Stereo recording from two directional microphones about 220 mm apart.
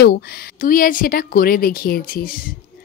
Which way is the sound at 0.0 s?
40° left (ahead or behind).